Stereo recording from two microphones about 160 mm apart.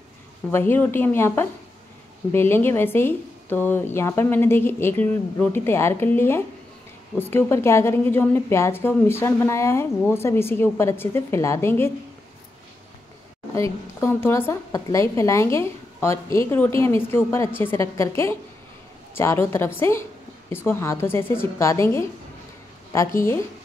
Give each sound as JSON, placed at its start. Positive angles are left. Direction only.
{"t": 0.5, "sound": "a woman's voice", "side_deg": 15}
{"t": 13.6, "sound": "a woman's voice", "side_deg": 15}